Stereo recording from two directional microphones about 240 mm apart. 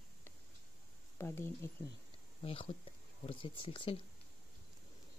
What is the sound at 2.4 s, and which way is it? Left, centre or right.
Speech, left.